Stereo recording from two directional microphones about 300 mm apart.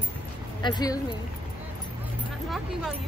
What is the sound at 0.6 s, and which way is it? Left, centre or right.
Speech, centre.